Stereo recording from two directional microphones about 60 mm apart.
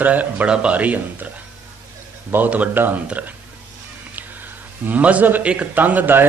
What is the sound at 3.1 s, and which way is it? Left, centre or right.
Speech, right.